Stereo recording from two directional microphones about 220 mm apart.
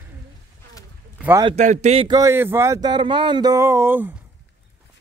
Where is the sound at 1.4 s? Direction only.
25° right (ahead or behind); by 4.1 s 10° right (ahead or behind).